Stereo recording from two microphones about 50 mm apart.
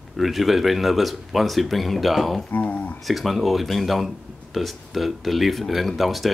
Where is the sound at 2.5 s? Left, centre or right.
Left.